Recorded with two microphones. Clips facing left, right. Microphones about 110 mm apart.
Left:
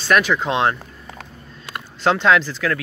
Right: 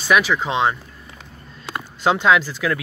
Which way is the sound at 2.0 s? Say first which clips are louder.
Even; 10° right (ahead or behind).